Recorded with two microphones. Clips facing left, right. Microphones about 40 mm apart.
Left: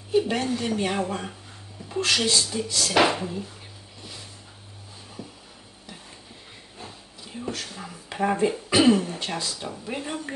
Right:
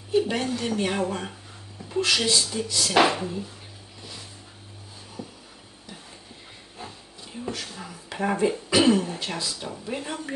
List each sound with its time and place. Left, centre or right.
0.1 s speech: centre
6.8 s a sound: centre
8.8 s speech: centre